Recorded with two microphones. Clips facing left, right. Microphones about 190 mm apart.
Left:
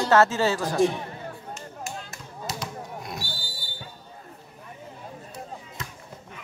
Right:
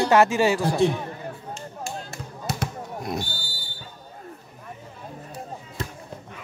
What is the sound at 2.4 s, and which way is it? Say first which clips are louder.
Basketball bounce: right 3 dB; 50° right (ahead or behind).